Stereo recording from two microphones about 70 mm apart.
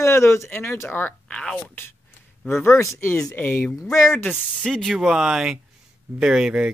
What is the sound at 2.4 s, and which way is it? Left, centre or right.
Speech, left.